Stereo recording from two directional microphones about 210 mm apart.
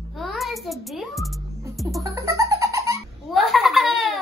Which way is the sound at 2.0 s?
15° right (ahead or behind).